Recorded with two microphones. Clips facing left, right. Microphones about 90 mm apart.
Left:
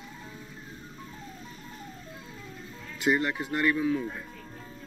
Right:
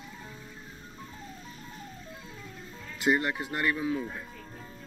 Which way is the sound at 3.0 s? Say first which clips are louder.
Even; 5° right (ahead or behind).